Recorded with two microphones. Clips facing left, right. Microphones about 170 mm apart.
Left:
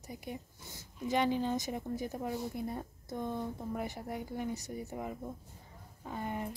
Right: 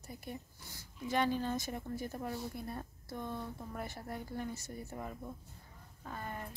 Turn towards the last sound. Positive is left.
turn(degrees=15)  # may be behind; listen again after turning